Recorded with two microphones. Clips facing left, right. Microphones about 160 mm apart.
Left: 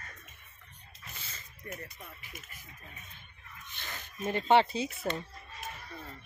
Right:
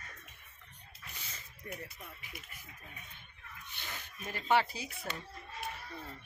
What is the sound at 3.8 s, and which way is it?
Speech, 10° right (ahead or behind).